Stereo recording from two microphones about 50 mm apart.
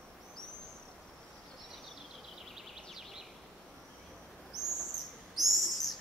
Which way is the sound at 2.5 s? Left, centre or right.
Centre.